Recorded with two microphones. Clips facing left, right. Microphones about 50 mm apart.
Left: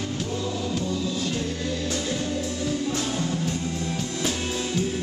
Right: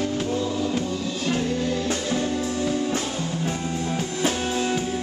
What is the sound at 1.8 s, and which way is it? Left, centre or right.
Music, right.